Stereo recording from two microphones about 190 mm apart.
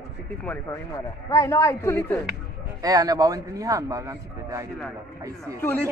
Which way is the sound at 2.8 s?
20° right (ahead or behind).